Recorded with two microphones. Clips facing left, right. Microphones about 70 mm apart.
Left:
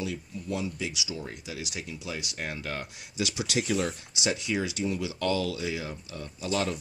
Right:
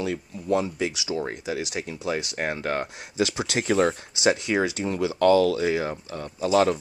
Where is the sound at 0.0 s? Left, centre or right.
Right.